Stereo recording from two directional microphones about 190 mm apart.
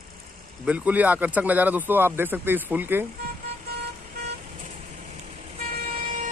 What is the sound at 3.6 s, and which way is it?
Vehicle, 55° right (ahead or behind).